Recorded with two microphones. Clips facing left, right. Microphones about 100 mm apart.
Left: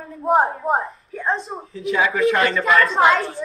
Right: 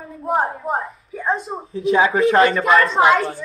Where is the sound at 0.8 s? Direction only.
5° right (ahead or behind).